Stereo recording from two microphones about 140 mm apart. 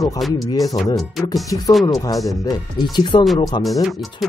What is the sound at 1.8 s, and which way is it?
Speech, 25° left (ahead or behind).